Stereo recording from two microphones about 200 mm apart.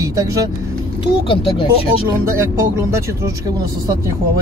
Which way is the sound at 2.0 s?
15° right (ahead or behind).